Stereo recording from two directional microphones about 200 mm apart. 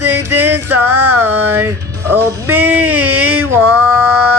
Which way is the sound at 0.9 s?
90° right.